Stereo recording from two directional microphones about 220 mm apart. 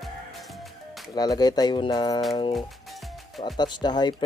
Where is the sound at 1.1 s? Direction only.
20° left (ahead or behind).